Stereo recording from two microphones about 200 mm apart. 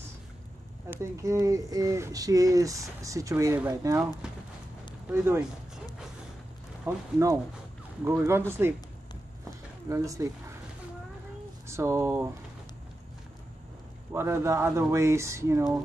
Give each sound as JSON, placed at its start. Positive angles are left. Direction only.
{"t": 0.8, "sound": "speech", "side_deg": -15}
{"t": 4.2, "sound": "a sound", "side_deg": -5}
{"t": 5.1, "sound": "speech", "side_deg": -10}
{"t": 6.8, "sound": "speech", "side_deg": -15}
{"t": 9.4, "sound": "a sound", "side_deg": -15}
{"t": 11.6, "sound": "speech", "side_deg": -15}
{"t": 14.1, "sound": "speech", "side_deg": -15}